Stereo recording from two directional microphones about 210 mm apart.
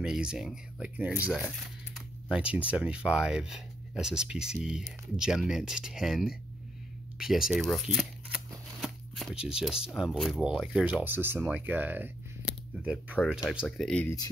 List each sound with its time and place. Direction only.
0.0 s speech: 5° right (ahead or behind)